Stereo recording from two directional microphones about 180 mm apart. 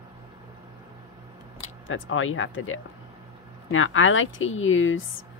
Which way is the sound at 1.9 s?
90° left.